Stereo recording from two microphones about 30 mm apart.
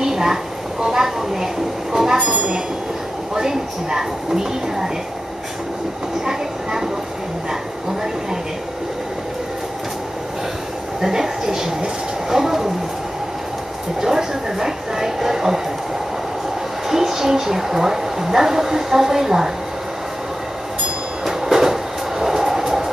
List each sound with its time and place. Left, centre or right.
0.0 s a sound: centre
0.8 s a woman's voice: centre
2.1 s speech: right
3.3 s a woman's voice: centre
6.2 s a woman's voice: centre
11.0 s speech: centre
14.0 s a woman's voice: centre
16.9 s a woman's voice: centre
21.3 s train: centre